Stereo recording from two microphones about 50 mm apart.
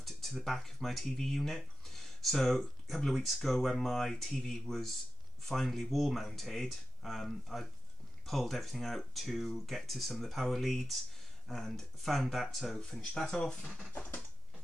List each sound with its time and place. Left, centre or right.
0.0 s speech: centre
13.9 s typing: left